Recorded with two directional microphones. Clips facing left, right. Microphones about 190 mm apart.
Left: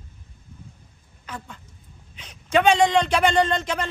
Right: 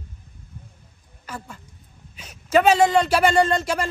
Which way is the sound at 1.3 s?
10° right (ahead or behind).